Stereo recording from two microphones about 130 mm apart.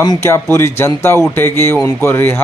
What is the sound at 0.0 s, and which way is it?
Speech, 30° left (ahead or behind).